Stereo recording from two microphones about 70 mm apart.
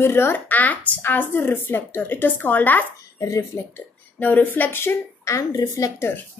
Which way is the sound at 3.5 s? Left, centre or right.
Left.